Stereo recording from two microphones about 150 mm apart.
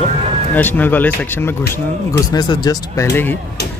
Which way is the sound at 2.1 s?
25° left (ahead or behind).